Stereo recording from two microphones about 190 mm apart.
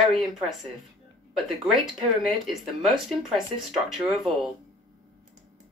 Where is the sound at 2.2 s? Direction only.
Centre (ahead or behind).